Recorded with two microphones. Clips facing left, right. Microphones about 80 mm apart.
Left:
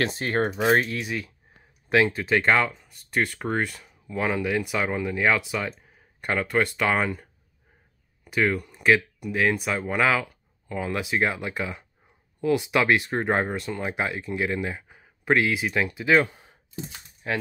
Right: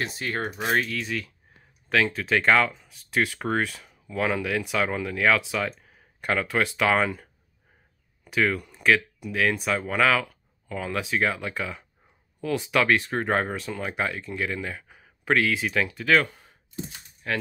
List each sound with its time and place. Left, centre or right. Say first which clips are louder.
0.1 s speech: left 5 dB; left
0.9 s speech: even; centre